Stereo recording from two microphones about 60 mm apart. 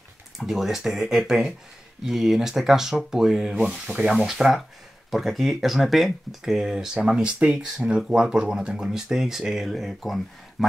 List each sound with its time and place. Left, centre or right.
0.4 s speech: centre